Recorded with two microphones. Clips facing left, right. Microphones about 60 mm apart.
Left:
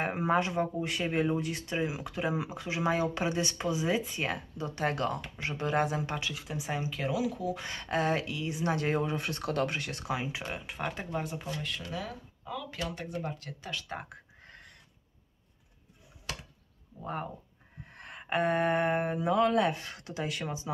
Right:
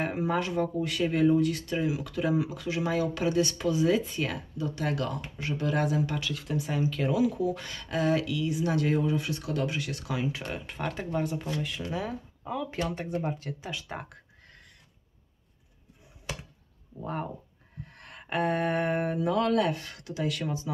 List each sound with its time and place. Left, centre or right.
0.0 s speech: left
6.3 s speech: centre
7.0 s speech: centre
7.6 s speech: left
10.5 s speech: centre
11.9 s speech: right
17.0 s speech: centre
17.9 s speech: centre